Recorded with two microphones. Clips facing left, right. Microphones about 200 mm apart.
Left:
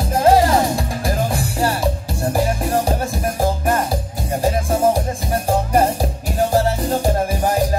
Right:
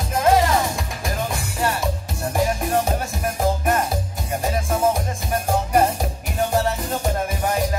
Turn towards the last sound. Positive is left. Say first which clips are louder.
# left 5 dB
turn(degrees=35)  # may be behind; listen again after turning